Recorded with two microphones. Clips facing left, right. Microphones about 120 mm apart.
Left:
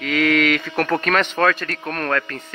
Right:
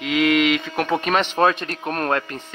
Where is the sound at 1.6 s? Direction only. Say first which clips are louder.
Right 1 dB; 25° right (ahead or behind).